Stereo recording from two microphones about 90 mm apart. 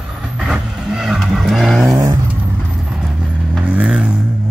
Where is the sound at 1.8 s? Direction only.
35° right (ahead or behind).